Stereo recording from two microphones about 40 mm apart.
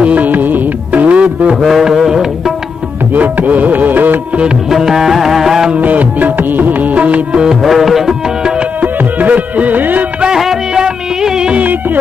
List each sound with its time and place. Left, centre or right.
0.0 s music: right
0.3 s music: right
1.0 s music: right
1.6 s music: centre
3.2 s music: right
4.6 s music: centre
5.8 s music: right
7.6 s music: centre
8.8 s music: right
10.3 s music: centre
11.5 s music: right